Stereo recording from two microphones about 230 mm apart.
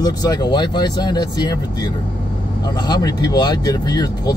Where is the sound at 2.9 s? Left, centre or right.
Centre.